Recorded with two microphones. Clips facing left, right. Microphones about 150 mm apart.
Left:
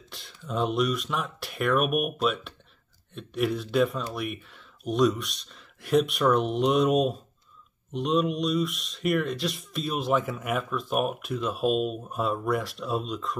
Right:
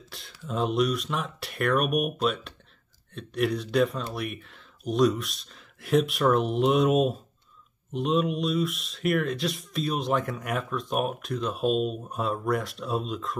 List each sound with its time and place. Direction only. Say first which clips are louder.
0.1 s speech: left 1 dB; centre (ahead or behind)